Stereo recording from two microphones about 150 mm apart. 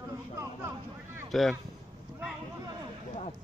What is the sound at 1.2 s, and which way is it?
Speech, centre (ahead or behind).